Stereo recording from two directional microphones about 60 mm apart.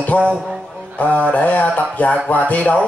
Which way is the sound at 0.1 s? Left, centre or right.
Left.